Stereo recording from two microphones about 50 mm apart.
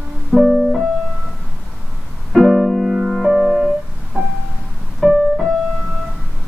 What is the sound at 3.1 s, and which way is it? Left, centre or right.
Music, centre.